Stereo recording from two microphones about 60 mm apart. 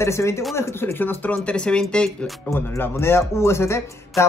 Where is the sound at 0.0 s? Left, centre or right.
Left.